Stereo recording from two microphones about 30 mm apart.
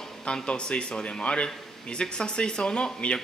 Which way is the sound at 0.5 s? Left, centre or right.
Left.